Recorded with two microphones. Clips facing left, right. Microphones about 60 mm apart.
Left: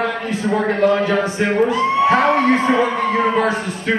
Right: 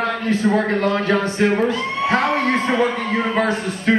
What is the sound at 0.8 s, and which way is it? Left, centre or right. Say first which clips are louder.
A man's voice: left 3 dB; centre.